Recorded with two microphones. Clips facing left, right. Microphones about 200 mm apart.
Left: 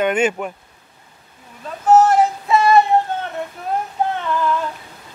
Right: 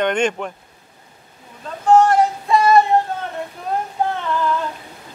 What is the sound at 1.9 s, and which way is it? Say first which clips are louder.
Female singing: even; 5° left (ahead or behind).